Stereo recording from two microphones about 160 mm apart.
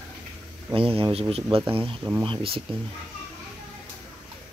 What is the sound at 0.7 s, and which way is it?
Speech, 35° right (ahead or behind).